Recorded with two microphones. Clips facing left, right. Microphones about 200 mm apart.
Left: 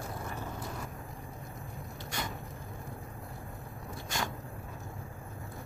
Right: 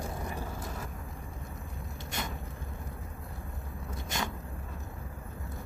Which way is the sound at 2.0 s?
20° right (ahead or behind).